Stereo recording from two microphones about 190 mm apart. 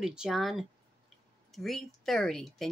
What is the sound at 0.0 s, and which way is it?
Speech, 5° right (ahead or behind).